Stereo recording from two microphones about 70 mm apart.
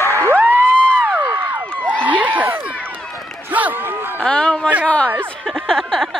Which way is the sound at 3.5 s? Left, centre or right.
Right.